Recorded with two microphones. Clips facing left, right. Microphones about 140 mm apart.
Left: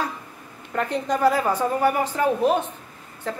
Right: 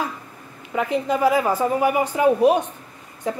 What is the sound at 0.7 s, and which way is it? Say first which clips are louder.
A woman's voice: right 2 dB; 5° right (ahead or behind).